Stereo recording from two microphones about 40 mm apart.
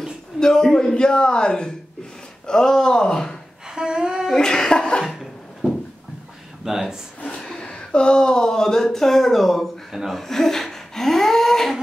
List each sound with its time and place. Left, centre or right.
0.4 s a man's voice: centre
3.7 s humming: centre
4.4 s a man's voice: centre
5.0 s a sound: centre
6.6 s speech: centre
7.2 s speech: centre
10.2 s speech: centre